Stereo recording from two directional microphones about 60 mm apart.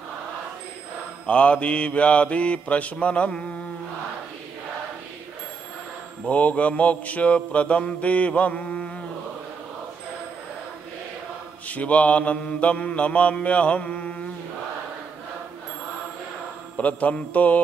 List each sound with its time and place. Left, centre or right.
1.2 s mantra: centre
6.2 s mantra: left
11.6 s mantra: left
16.7 s mantra: left